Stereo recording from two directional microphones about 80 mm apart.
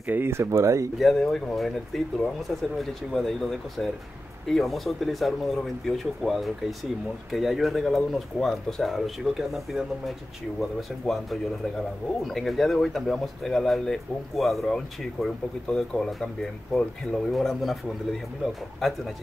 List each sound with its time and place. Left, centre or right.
0.0 s speech: right
0.3 s speech: right
0.9 s speech: centre
2.8 s speech: centre
12.2 s speech: centre